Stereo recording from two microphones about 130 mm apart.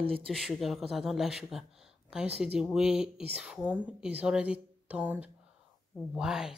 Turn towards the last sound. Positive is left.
turn(degrees=-5)  # may be behind; listen again after turning